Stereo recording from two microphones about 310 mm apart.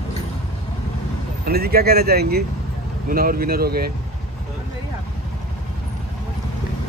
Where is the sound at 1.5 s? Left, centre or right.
Right.